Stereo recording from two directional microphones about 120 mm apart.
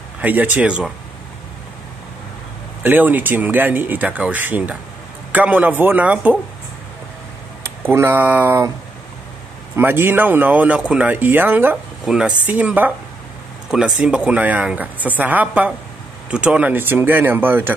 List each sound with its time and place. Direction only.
0.2 s speech: 15° right (ahead or behind)
2.8 s speech: 15° right (ahead or behind)
7.9 s speech: 20° right (ahead or behind)
9.8 s speech: 15° right (ahead or behind)
12.0 s speech: 5° right (ahead or behind)